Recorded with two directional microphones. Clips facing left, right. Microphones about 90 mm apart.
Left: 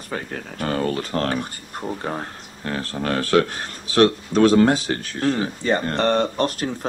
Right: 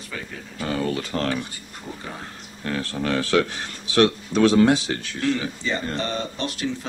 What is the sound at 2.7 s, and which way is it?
Speech, 40° left (ahead or behind).